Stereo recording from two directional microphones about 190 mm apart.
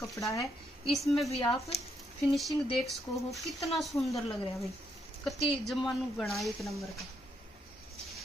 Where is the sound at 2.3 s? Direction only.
Centre (ahead or behind).